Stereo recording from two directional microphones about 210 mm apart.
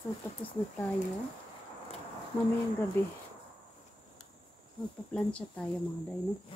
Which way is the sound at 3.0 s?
10° left (ahead or behind).